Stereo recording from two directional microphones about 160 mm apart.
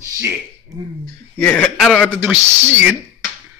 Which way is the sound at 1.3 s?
10° left (ahead or behind).